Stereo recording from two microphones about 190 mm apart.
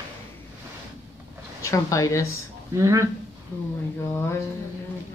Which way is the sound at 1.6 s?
15° left (ahead or behind).